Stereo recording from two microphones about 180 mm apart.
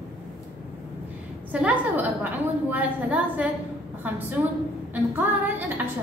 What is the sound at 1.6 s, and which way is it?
A woman's voice, 10° right (ahead or behind).